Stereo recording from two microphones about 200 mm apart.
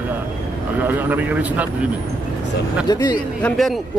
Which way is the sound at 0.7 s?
10° right (ahead or behind).